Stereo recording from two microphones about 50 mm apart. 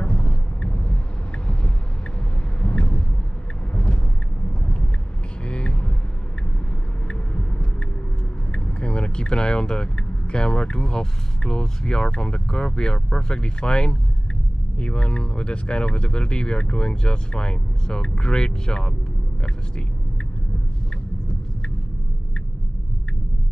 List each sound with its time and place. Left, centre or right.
0.0 s vehicle: centre
2.6 s vehicle: centre
5.4 s vehicle: centre
7.1 s vehicle: centre
8.5 s speech: centre